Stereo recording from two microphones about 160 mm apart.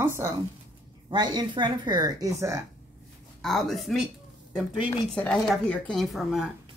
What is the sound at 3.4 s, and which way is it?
Speech, centre (ahead or behind).